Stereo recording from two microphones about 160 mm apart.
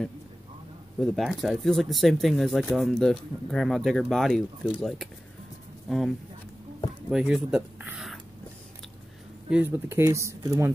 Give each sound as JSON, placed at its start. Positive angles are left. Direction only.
{"t": 1.0, "sound": "speech", "side_deg": 0}
{"t": 9.5, "sound": "speech", "side_deg": -10}